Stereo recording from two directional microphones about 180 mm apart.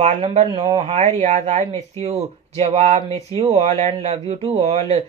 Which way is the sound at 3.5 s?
40° right (ahead or behind).